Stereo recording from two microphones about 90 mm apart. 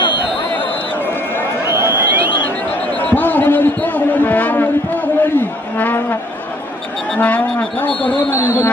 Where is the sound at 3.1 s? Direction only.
20° left (ahead or behind).